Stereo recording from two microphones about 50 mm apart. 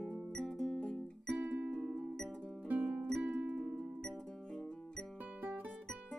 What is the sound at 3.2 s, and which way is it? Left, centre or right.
Music, right.